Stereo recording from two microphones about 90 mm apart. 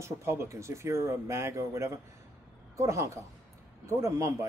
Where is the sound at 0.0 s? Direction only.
30° right (ahead or behind).